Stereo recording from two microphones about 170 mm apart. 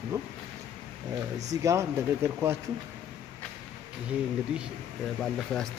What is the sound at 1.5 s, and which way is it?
Speech, 20° right (ahead or behind).